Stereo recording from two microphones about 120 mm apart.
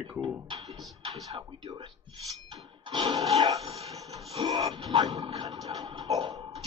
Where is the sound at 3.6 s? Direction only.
60° right (ahead or behind).